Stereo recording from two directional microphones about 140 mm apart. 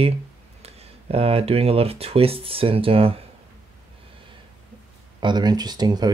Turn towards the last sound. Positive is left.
turn(degrees=-30)  # may be behind; listen again after turning